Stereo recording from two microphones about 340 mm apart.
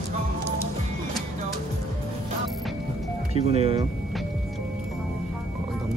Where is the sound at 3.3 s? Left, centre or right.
Centre.